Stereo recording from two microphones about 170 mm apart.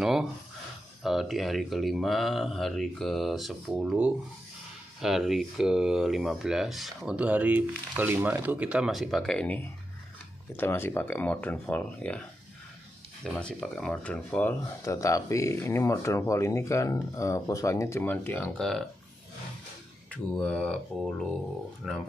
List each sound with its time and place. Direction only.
0.0 s speech: 5° right (ahead or behind)
20.3 s speech: 5° left (ahead or behind)